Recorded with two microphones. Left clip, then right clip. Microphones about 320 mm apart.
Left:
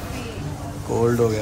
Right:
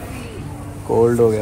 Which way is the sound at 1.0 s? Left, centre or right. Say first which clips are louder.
Right 5 dB; centre.